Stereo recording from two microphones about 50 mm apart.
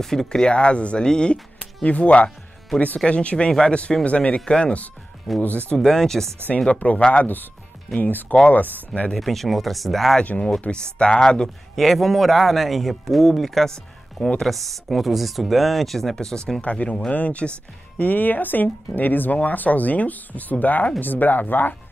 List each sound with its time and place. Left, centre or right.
0.0 s speech: centre
1.9 s speech: left
5.3 s a man's voice: centre
6.7 s speech: left
8.0 s speech: left
9.1 s a man's voice: centre
10.7 s a man's voice: centre
16.6 s speech: left